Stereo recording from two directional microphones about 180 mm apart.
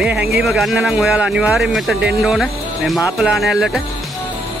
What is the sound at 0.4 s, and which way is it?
Speech, centre (ahead or behind).